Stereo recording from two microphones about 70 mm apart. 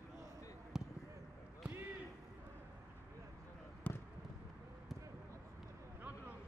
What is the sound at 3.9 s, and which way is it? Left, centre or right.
Basketball bounce, left.